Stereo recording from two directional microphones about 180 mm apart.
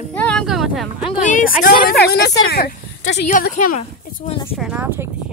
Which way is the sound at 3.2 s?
45° left (ahead or behind).